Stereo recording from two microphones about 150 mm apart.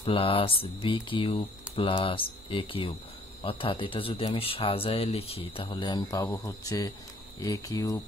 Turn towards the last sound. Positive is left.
turn(degrees=25)  # may be behind; listen again after turning